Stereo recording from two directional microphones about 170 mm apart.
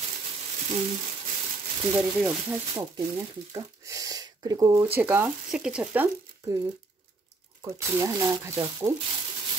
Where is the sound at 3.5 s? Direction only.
20° right (ahead or behind).